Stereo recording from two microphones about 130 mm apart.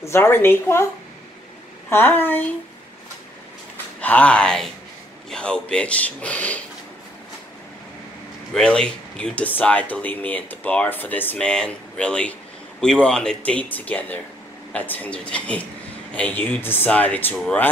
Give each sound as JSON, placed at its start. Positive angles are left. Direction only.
{"t": 0.0, "sound": "a woman's voice", "side_deg": 20}
{"t": 1.9, "sound": "speech", "side_deg": 15}
{"t": 4.0, "sound": "speech", "side_deg": 10}
{"t": 8.5, "sound": "speech", "side_deg": 5}